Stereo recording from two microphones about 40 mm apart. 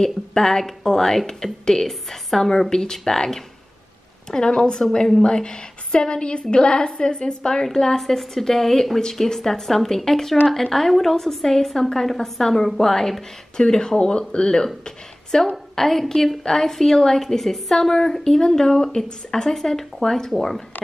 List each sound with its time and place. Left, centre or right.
0.0 s a woman's voice: centre
8.0 s a woman's voice: centre